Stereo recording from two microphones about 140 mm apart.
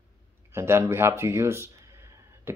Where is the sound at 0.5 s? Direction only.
20° right (ahead or behind).